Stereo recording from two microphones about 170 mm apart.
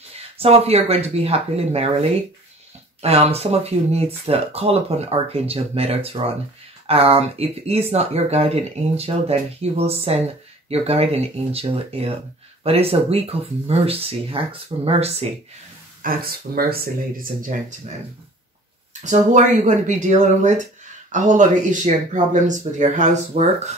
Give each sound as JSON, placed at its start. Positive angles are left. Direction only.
{"t": 0.4, "sound": "speech", "side_deg": -35}
{"t": 16.0, "sound": "speech", "side_deg": -60}
{"t": 18.9, "sound": "speech", "side_deg": -45}